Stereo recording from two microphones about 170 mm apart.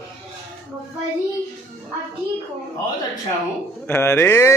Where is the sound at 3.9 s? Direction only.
15° left (ahead or behind).